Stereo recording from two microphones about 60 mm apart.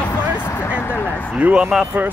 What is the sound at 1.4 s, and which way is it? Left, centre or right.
Speech, right.